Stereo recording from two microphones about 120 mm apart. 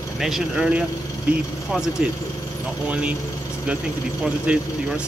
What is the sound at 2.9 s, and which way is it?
Speech, 10° right (ahead or behind).